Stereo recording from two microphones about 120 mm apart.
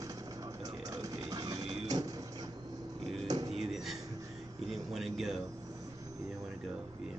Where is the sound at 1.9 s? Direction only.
35° right (ahead or behind).